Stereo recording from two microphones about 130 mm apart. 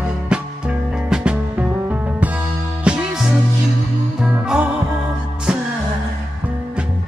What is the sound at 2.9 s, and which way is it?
Music, 5° right (ahead or behind).